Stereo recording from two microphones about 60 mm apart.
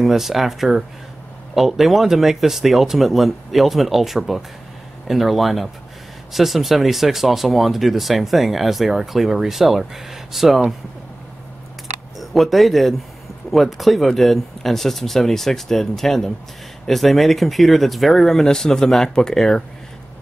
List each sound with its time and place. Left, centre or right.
0.0 s speech: centre
12.2 s speech: centre